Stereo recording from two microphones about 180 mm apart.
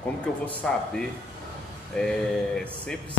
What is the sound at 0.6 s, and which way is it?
Speech, 5° left (ahead or behind).